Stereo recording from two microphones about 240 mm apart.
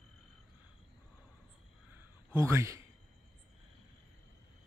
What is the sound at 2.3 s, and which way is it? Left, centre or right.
Speech, centre.